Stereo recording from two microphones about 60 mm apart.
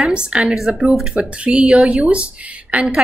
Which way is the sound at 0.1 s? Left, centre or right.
Centre.